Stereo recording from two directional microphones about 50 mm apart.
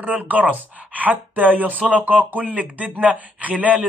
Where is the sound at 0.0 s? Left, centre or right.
Right.